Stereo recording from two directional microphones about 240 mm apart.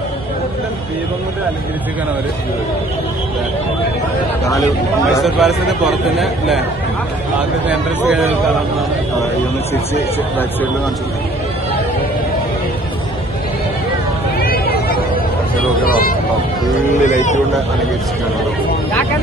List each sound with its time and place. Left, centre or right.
5.2 s a man's voice: centre
14.4 s a sound: left
15.8 s vehicle: left
17.0 s speech: left